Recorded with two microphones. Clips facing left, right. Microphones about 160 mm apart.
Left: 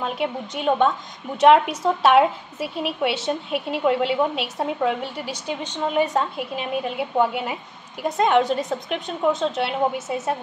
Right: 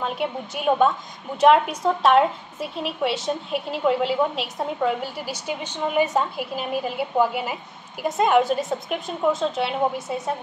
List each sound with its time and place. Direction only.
0.0 s a woman's voice: centre (ahead or behind)